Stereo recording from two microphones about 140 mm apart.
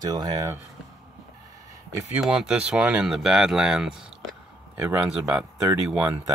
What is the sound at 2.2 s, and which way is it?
Speech, 5° right (ahead or behind).